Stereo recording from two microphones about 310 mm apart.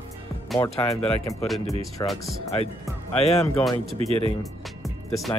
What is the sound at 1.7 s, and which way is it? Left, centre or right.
Speech, centre.